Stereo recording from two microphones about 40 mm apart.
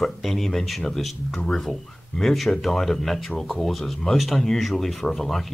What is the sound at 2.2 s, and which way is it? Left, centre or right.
A man's voice, centre.